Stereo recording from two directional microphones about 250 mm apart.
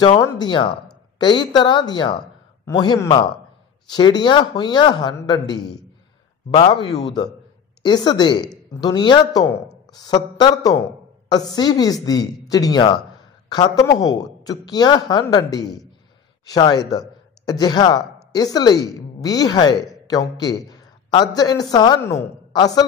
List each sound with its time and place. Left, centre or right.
0.0 s a woman's voice: centre